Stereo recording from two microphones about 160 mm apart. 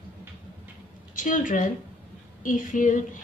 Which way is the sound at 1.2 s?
55° left (ahead or behind).